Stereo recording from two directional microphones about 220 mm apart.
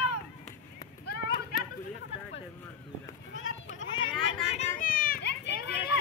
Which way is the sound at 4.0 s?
25° left (ahead or behind).